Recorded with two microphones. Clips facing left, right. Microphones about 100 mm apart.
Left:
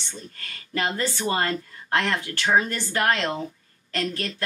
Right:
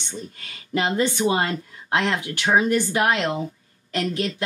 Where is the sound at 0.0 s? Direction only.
15° right (ahead or behind).